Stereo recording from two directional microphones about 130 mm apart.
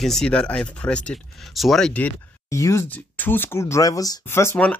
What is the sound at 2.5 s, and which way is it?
Speech, 20° left (ahead or behind).